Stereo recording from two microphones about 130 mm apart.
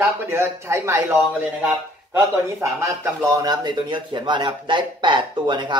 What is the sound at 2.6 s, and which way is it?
Speech, 25° right (ahead or behind).